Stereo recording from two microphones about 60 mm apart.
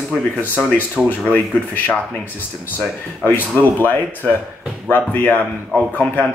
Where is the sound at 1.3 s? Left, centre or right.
Left.